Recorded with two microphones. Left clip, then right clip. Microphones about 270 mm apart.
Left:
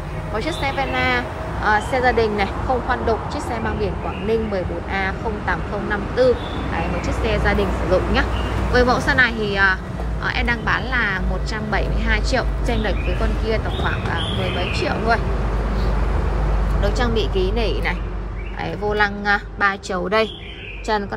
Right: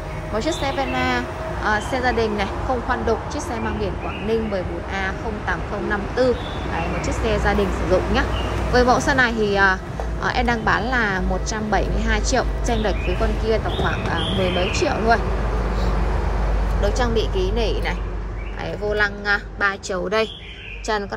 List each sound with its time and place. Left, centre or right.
0.4 s speech: centre
16.8 s a woman's voice: centre